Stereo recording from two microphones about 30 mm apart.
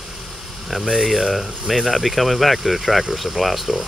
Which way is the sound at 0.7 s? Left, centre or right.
Centre.